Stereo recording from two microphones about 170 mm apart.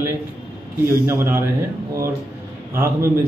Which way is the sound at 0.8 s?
15° right (ahead or behind).